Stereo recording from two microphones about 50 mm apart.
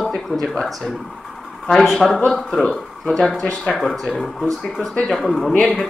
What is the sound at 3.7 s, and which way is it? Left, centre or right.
Speech, centre.